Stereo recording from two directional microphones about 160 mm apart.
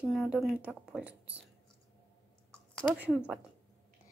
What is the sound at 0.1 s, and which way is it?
Speech, centre (ahead or behind).